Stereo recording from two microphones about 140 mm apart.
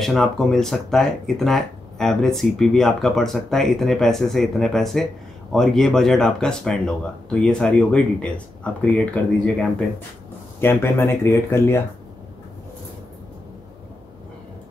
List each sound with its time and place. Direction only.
0.0 s speech: centre (ahead or behind)